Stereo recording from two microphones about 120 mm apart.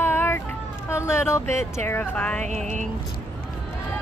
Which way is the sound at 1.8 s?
15° left (ahead or behind).